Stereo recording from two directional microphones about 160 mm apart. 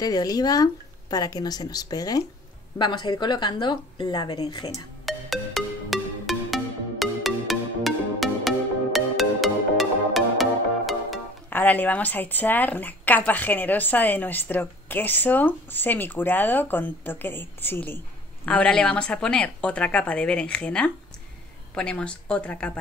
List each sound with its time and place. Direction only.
0.0 s a woman's voice: 25° left (ahead or behind)
5.0 s music: centre (ahead or behind)
11.5 s a woman's voice: 10° left (ahead or behind)